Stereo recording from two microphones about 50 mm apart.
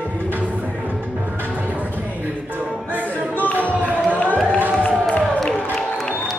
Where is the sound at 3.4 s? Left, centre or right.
Left.